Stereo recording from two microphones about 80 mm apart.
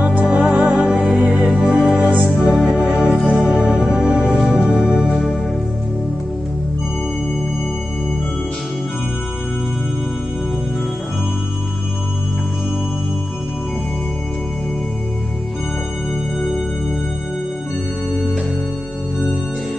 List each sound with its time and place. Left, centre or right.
0.0 s music: centre